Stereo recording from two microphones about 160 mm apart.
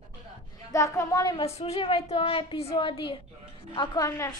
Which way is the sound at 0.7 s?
20° left (ahead or behind).